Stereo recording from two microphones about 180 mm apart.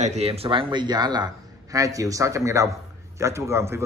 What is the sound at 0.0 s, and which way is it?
A man's voice, 35° right (ahead or behind).